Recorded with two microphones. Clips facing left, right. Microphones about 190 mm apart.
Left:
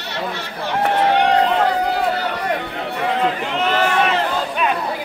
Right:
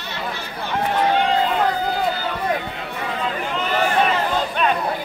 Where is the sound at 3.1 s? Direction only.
75° left (ahead or behind).